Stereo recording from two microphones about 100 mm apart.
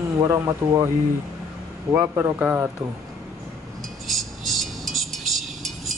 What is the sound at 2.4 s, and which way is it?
Speech, 20° right (ahead or behind).